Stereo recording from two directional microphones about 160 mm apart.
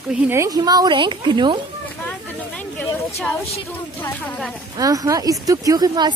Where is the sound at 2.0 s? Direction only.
10° left (ahead or behind).